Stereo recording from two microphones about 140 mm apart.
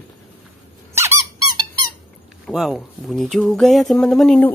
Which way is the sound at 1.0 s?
20° right (ahead or behind).